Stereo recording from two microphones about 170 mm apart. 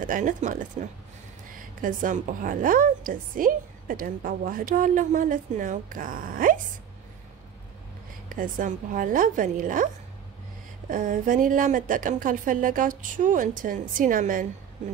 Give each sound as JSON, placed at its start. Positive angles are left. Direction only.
{"t": 0.0, "sound": "a woman's voice", "side_deg": -50}
{"t": 1.8, "sound": "a woman's voice", "side_deg": -50}
{"t": 8.3, "sound": "a woman's voice", "side_deg": -50}
{"t": 10.9, "sound": "a woman's voice", "side_deg": -50}